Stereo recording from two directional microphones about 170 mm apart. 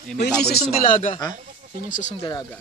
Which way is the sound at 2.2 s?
25° left (ahead or behind).